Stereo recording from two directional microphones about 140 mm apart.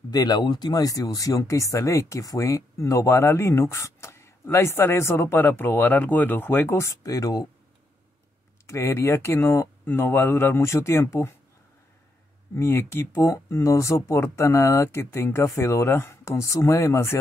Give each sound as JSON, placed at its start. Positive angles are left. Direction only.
{"t": 0.1, "sound": "speech", "side_deg": 30}
{"t": 8.6, "sound": "speech", "side_deg": 20}
{"t": 12.5, "sound": "speech", "side_deg": 20}